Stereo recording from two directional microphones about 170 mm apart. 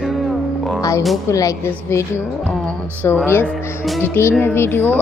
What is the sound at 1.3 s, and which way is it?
Speech, 20° left (ahead or behind).